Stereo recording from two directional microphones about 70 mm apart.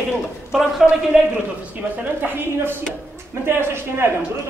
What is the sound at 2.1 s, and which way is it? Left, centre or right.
A woman's voice, right.